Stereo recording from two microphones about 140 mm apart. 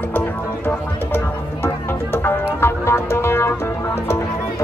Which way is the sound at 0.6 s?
15° left (ahead or behind).